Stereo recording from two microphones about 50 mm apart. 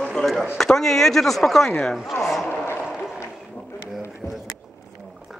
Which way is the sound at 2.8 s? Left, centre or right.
Centre.